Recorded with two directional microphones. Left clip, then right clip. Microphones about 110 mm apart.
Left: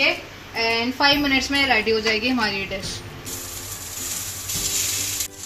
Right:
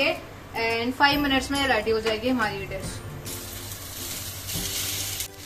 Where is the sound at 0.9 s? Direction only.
70° left (ahead or behind).